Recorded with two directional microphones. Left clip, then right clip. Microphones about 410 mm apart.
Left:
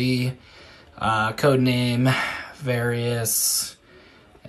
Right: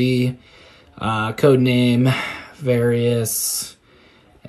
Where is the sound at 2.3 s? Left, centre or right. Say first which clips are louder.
Even; centre.